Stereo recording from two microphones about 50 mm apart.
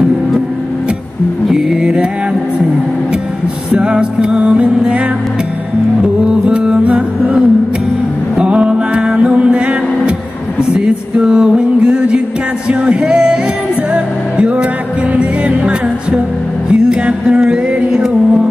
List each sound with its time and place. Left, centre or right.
1.5 s music: centre
3.7 s music: right
6.2 s music: centre